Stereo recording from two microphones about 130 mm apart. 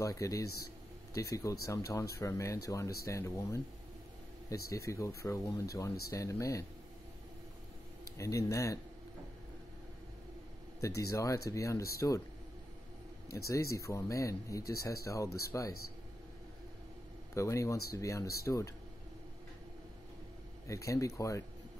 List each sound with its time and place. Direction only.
0.0 s speech: 25° left (ahead or behind)
8.2 s speech: 25° left (ahead or behind)
10.8 s speech: 25° left (ahead or behind)
13.3 s speech: 25° left (ahead or behind)
17.3 s speech: 25° left (ahead or behind)
20.6 s speech: 25° left (ahead or behind)